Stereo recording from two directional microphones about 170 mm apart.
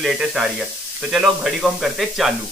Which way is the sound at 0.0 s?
Centre (ahead or behind).